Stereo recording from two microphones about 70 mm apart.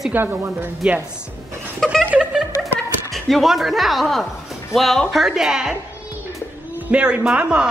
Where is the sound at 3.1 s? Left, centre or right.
Centre.